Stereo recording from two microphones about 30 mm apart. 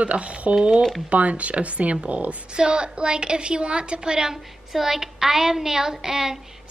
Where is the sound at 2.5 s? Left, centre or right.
Right.